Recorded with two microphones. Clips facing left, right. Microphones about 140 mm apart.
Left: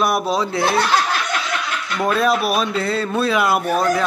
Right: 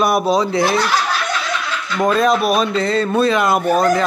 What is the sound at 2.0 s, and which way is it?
A man's voice, 5° left (ahead or behind).